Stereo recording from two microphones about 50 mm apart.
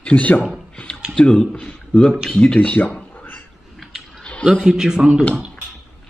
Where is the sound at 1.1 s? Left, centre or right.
Centre.